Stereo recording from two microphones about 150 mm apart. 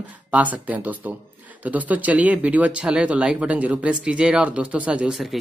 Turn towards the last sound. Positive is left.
turn(degrees=-5)  # may be behind; listen again after turning